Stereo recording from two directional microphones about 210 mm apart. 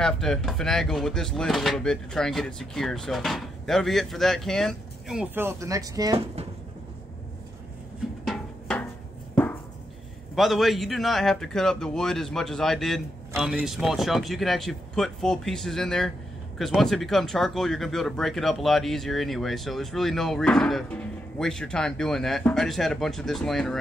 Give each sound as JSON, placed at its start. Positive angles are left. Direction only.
{"t": 0.0, "sound": "speech", "side_deg": 0}
{"t": 8.3, "sound": "a sound", "side_deg": 5}
{"t": 10.3, "sound": "speech", "side_deg": 0}